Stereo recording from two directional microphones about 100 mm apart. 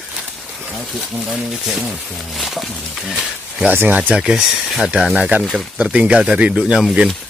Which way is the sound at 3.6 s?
20° right (ahead or behind).